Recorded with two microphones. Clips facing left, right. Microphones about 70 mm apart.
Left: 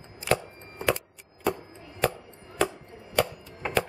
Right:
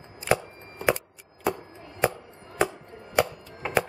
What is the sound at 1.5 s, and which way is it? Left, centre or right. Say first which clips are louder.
Chopping: even; centre.